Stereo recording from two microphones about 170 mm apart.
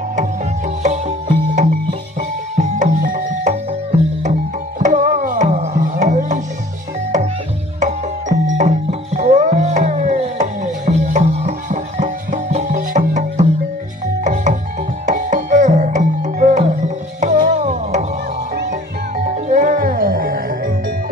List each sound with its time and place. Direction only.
1.5 s music: 50° right (ahead or behind)
7.8 s music: 45° right (ahead or behind)
14.2 s music: 45° right (ahead or behind)
18.5 s music: 65° right (ahead or behind)
19.3 s music: 50° right (ahead or behind)